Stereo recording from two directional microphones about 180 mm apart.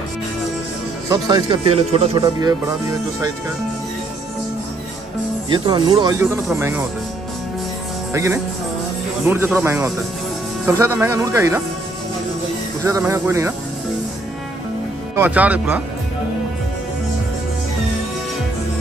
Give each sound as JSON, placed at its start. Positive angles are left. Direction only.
{"t": 1.0, "sound": "speech", "side_deg": -20}
{"t": 2.2, "sound": "speech", "side_deg": -20}
{"t": 5.5, "sound": "speech", "side_deg": -25}
{"t": 6.5, "sound": "speech", "side_deg": -15}
{"t": 8.1, "sound": "speech", "side_deg": -15}
{"t": 12.8, "sound": "speech", "side_deg": -15}
{"t": 15.1, "sound": "speech", "side_deg": -10}